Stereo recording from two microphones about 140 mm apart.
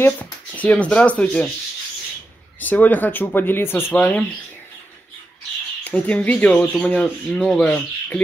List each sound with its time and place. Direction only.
0.0 s speech: 10° left (ahead or behind)
2.6 s speech: 10° left (ahead or behind)
5.9 s speech: 10° left (ahead or behind)